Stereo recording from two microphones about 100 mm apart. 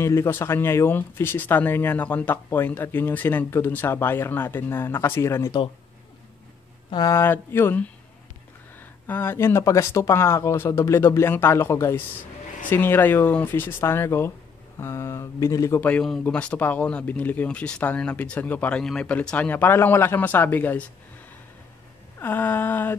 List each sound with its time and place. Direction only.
0.0 s speech: 30° left (ahead or behind)
7.1 s speech: 25° left (ahead or behind)
16.0 s speech: 5° left (ahead or behind)
22.2 s speech: 20° left (ahead or behind)